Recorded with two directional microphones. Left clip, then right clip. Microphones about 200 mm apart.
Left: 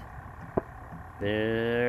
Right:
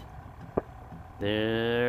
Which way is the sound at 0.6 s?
65° left (ahead or behind).